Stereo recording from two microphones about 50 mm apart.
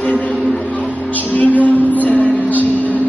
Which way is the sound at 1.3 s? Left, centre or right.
Left.